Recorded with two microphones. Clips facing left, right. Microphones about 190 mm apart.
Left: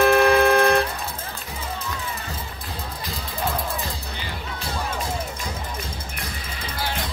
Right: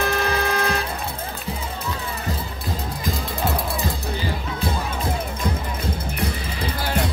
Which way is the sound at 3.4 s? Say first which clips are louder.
Right 1 dB; 75° right (ahead or behind).